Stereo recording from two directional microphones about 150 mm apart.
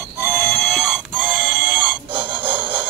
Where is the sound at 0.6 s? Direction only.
5° right (ahead or behind).